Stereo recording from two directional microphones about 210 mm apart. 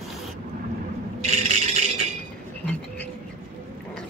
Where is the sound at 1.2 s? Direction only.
35° right (ahead or behind).